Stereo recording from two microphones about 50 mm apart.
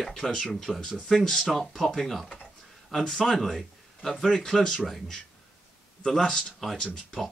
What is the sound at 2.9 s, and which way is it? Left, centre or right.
Speech, centre.